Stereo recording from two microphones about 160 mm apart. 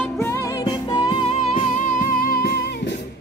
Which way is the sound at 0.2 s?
15° left (ahead or behind).